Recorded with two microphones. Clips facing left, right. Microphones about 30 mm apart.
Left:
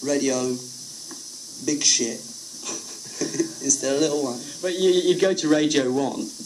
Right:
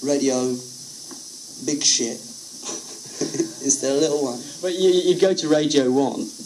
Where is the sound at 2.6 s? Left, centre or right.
Centre.